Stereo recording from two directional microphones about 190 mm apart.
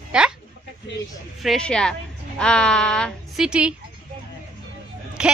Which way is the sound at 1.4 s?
Centre (ahead or behind).